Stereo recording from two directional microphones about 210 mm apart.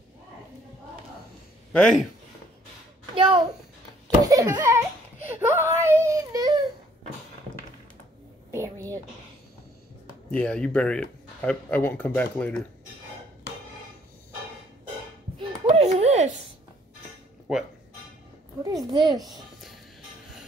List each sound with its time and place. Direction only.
1.7 s speech: 5° left (ahead or behind)
3.2 s speech: 25° right (ahead or behind)
4.2 s a sound: 15° right (ahead or behind)
8.5 s a sound: 15° right (ahead or behind)
10.3 s speech: 5° left (ahead or behind)
15.3 s a sound: 30° right (ahead or behind)
17.5 s speech: 5° right (ahead or behind)
18.9 s speech: 20° right (ahead or behind)
19.2 s music: centre (ahead or behind)